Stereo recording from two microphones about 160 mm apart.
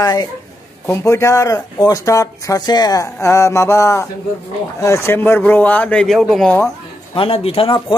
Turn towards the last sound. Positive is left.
turn(degrees=35)  # may be behind; listen again after turning